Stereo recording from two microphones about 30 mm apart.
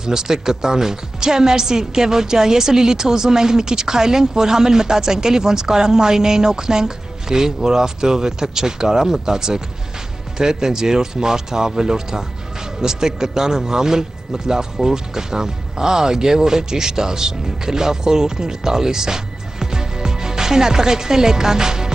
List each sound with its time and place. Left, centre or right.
0.0 s a woman's voice: centre